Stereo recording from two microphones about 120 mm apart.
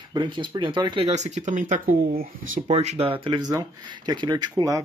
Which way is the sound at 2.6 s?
60° right (ahead or behind).